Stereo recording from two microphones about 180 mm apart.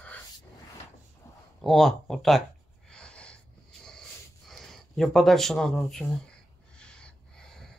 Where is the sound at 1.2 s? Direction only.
15° left (ahead or behind).